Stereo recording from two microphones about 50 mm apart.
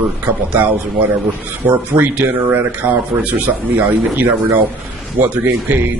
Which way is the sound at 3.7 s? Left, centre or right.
Right.